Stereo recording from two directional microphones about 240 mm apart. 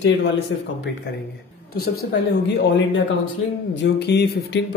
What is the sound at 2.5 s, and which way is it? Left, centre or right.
Speech, left.